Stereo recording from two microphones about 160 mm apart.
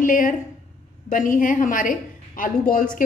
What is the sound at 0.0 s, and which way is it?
A woman's voice, 55° left (ahead or behind).